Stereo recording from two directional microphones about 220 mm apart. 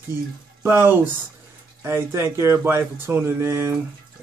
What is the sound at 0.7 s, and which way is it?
Speech, 10° right (ahead or behind).